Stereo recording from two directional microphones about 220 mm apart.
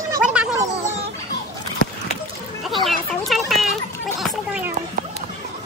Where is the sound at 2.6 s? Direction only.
Centre (ahead or behind).